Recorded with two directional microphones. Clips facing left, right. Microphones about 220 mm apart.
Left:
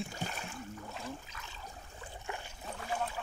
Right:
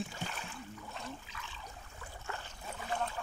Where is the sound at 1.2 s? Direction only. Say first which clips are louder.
Even; 45° left (ahead or behind).